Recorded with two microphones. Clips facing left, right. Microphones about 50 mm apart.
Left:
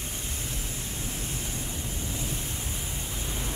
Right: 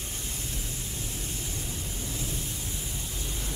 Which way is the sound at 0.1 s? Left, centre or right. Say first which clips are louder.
Left 1 dB; left.